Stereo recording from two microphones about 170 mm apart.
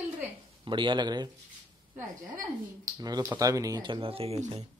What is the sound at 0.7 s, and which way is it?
Speech, 30° right (ahead or behind).